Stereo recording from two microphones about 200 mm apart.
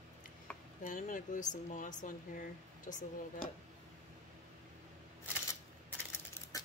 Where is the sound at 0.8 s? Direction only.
40° left (ahead or behind).